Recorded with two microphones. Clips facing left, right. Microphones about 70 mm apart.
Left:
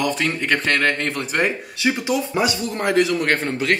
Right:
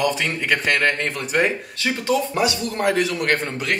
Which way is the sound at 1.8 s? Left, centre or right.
Centre.